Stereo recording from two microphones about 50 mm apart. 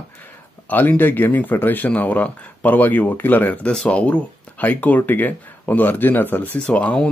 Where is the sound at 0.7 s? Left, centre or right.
Left.